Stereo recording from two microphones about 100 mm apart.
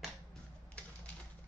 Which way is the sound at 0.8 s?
10° left (ahead or behind).